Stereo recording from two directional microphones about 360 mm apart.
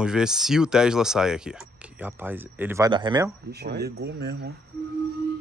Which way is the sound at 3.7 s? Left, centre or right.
Right.